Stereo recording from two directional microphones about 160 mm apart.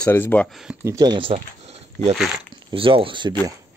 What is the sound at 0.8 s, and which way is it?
Speech, 25° right (ahead or behind).